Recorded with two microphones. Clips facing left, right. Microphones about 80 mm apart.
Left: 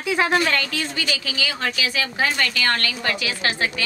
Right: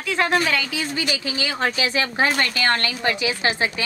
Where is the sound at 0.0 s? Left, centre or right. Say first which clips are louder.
Left 1 dB; centre.